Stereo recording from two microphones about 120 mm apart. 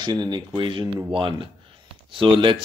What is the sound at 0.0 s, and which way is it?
Speech, 40° right (ahead or behind).